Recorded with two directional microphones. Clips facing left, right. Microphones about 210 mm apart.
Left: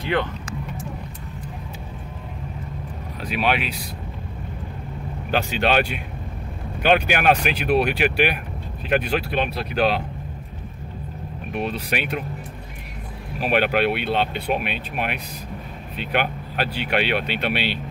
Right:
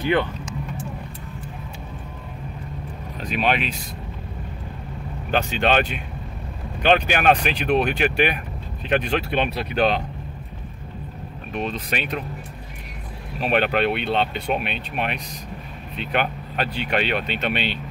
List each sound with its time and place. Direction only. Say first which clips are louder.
3.3 s speech: even; 5° left (ahead or behind)
5.3 s speech: even; 5° left (ahead or behind)
11.5 s speech: left 1 dB; 10° left (ahead or behind)
13.4 s speech: even; 5° left (ahead or behind)